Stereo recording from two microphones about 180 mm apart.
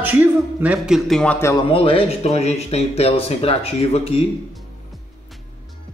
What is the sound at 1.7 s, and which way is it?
Speech, 30° left (ahead or behind).